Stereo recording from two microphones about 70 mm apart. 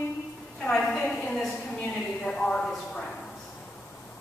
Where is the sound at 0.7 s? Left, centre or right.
Centre.